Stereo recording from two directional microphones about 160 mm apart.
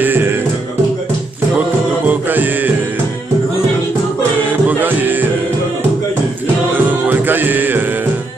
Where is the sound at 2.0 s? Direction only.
10° right (ahead or behind).